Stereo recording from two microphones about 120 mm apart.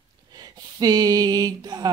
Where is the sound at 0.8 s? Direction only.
30° right (ahead or behind).